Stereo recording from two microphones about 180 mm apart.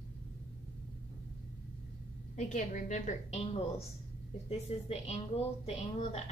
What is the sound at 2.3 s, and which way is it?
A woman's voice, 45° left (ahead or behind).